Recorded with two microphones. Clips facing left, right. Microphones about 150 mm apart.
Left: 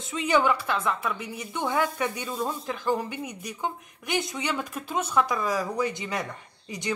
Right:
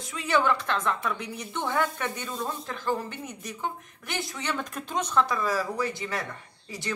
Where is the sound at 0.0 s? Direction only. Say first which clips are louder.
Left 2 dB; 20° left (ahead or behind).